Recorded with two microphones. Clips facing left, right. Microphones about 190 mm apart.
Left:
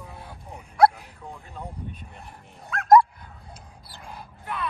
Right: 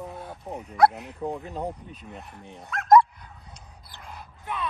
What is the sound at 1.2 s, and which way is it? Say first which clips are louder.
Speech: right 11 dB; 40° right (ahead or behind).